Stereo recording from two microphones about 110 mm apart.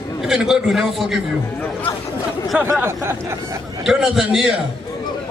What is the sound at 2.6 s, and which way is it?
Speech, 20° right (ahead or behind).